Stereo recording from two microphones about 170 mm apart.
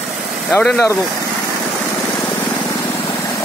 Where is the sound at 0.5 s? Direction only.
10° left (ahead or behind).